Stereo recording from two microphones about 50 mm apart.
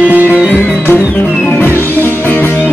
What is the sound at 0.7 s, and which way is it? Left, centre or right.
Music, left.